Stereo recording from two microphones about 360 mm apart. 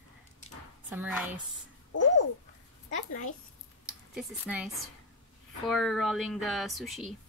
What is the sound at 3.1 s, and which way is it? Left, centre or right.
Speech, left.